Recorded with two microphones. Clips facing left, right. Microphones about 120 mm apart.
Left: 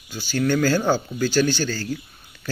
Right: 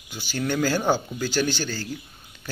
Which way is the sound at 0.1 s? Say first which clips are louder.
Left 5 dB; 15° right (ahead or behind).